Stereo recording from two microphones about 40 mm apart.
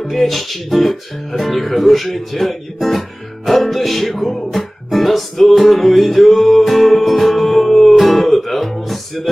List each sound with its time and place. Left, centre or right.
0.1 s speech: centre